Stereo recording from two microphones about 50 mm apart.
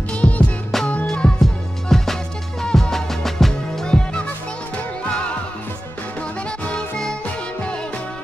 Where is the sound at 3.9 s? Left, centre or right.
Centre.